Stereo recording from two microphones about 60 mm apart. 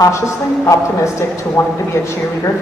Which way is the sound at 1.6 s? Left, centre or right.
Left.